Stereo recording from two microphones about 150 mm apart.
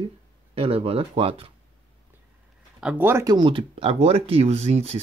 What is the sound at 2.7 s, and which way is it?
Speech, 10° right (ahead or behind).